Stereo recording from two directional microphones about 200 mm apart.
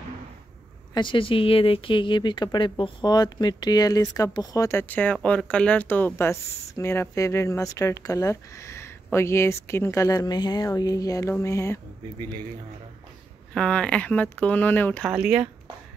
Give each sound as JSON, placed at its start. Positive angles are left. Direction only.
{"t": 0.9, "sound": "speech", "side_deg": 25}
{"t": 13.5, "sound": "speech", "side_deg": 5}
{"t": 15.0, "sound": "speech", "side_deg": -5}